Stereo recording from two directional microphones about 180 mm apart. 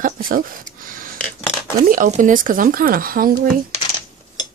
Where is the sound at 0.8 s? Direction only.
50° right (ahead or behind).